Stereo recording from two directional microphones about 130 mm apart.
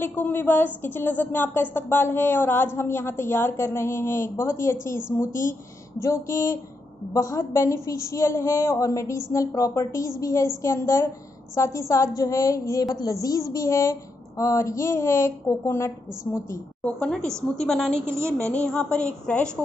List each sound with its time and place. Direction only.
0.0 s a woman's voice: 15° left (ahead or behind)
18.0 s speech: 20° right (ahead or behind)
18.4 s a woman's voice: 10° left (ahead or behind)